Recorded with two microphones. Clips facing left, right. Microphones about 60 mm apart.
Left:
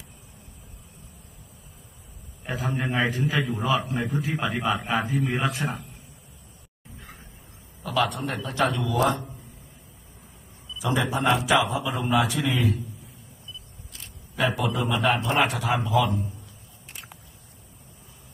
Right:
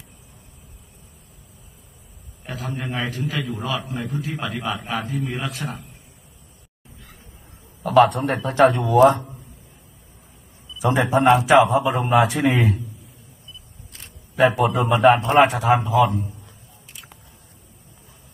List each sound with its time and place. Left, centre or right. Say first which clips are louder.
2.7 s a man's voice: left 2 dB; centre
3.7 s a man's voice: left 5 dB; left
4.2 s a man's voice: left 1 dB; centre
7.8 s a man's voice: right 10 dB; right
10.8 s a man's voice: right 6 dB; right
11.1 s a man's voice: right 9 dB; right
13.9 s single-lens reflex camera: right 8 dB; right
14.6 s a man's voice: right 8 dB; right